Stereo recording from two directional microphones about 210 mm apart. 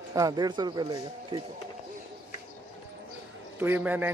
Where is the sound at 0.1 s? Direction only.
15° right (ahead or behind).